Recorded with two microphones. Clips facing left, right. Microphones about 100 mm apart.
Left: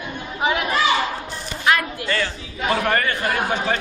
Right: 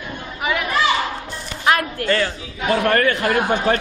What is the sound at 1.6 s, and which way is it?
Speech, 40° right (ahead or behind).